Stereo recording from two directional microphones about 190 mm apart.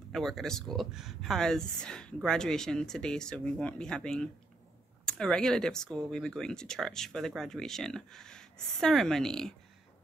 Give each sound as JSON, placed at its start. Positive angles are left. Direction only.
{"t": 0.1, "sound": "speech", "side_deg": 0}